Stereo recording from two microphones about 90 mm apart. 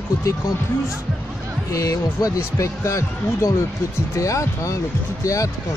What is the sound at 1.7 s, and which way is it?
Speech, 40° left (ahead or behind).